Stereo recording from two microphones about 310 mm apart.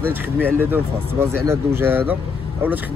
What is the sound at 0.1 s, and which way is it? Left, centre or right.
Speech, centre.